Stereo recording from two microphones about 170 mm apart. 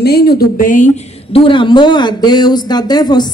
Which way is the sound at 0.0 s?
70° left (ahead or behind).